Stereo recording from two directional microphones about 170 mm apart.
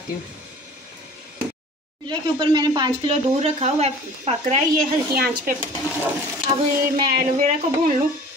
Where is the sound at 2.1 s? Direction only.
25° right (ahead or behind).